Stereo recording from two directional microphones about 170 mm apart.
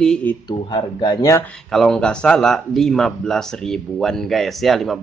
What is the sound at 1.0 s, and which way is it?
Speech, 20° left (ahead or behind).